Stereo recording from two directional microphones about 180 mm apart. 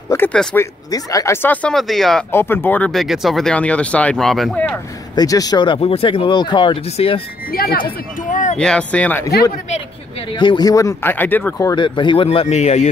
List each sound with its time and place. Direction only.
0.1 s speech: 10° left (ahead or behind)
0.9 s speech: 15° left (ahead or behind); by 2.2 s centre (ahead or behind)
2.3 s speech: 10° left (ahead or behind)
5.1 s speech: 20° left (ahead or behind)
7.5 s speech: 55° left (ahead or behind)
8.3 s a sound: 45° left (ahead or behind)
8.5 s speech: 5° left (ahead or behind)
10.3 s speech: 25° left (ahead or behind)